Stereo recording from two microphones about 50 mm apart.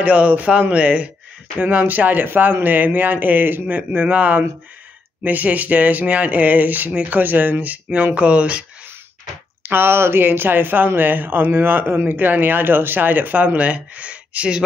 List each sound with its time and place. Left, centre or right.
0.0 s speech: right
9.6 s speech: right